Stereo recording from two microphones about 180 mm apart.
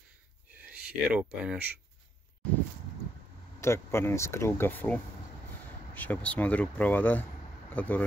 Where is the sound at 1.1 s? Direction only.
5° right (ahead or behind).